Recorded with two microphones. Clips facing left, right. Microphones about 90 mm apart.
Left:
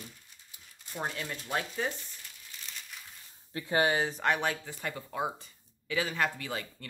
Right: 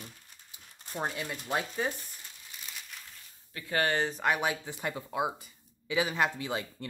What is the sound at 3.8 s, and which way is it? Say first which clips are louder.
Speech: left 1 dB; 10° left (ahead or behind).